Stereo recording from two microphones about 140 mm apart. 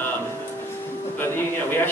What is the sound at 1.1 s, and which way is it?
Speech, 15° left (ahead or behind).